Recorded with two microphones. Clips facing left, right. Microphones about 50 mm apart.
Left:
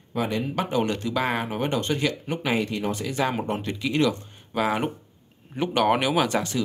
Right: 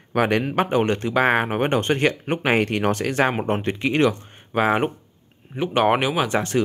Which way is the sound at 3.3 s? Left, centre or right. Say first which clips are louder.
Right 4 dB; right.